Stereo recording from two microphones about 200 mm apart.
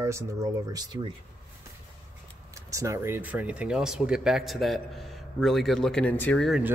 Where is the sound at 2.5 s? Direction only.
15° right (ahead or behind); by 6.6 s 5° left (ahead or behind).